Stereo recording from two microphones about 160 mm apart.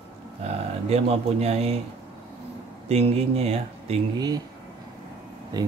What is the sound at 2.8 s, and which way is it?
Speech, 40° right (ahead or behind).